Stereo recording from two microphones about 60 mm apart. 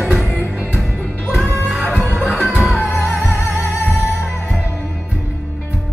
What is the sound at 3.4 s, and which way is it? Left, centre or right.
Music, left.